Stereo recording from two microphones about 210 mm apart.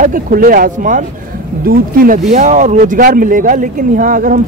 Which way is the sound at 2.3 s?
35° right (ahead or behind).